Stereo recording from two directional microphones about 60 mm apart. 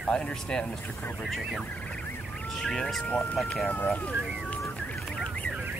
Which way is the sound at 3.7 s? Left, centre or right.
Left.